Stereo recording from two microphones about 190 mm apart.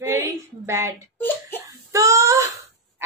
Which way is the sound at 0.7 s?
15° right (ahead or behind).